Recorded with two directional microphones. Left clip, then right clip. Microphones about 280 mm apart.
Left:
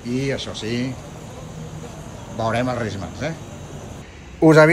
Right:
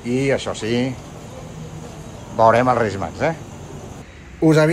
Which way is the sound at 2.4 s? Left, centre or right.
Right.